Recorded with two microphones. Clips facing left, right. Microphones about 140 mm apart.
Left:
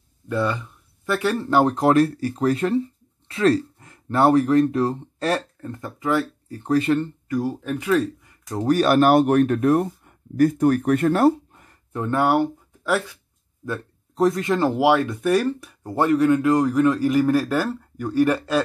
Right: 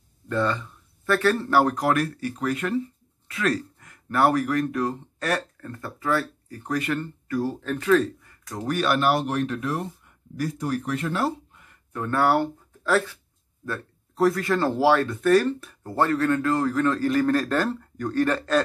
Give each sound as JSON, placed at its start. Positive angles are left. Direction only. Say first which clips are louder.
{"t": 0.3, "sound": "speech", "louder": "left 1 dB", "side_deg": 10}
{"t": 7.2, "sound": "speech", "louder": "right 2 dB", "side_deg": 15}
{"t": 8.5, "sound": "speech", "louder": "left 7 dB", "side_deg": 35}
{"t": 11.9, "sound": "speech", "louder": "left 2 dB", "side_deg": 20}